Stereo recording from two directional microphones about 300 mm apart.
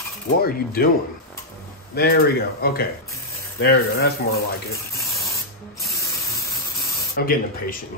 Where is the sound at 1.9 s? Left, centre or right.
Left.